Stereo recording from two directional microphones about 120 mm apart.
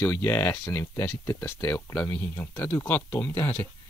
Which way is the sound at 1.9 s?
10° left (ahead or behind).